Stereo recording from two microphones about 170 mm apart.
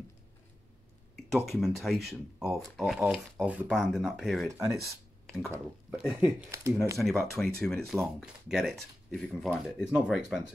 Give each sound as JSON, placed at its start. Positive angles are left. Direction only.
{"t": 1.1, "sound": "speech", "side_deg": 0}
{"t": 4.5, "sound": "speech", "side_deg": -20}
{"t": 4.8, "sound": "a sound", "side_deg": 0}
{"t": 5.9, "sound": "speech", "side_deg": -5}
{"t": 6.5, "sound": "speech", "side_deg": -15}
{"t": 7.0, "sound": "speech", "side_deg": 0}